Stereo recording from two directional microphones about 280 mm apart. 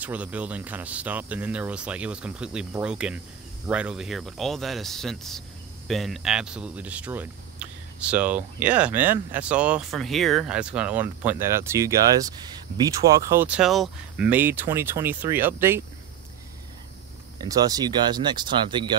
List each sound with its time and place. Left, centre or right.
0.0 s speech: centre
17.4 s speech: centre